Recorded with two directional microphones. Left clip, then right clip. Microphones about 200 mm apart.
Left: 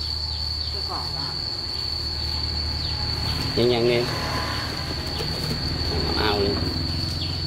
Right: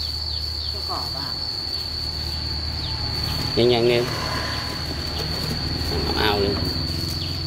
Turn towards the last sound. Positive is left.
turn(degrees=-15)  # may be behind; listen again after turning